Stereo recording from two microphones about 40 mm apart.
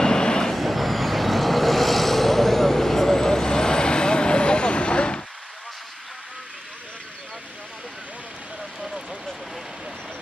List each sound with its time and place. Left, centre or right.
0.0 s vehicle: centre
0.6 s vehicle: centre; by 5.2 s left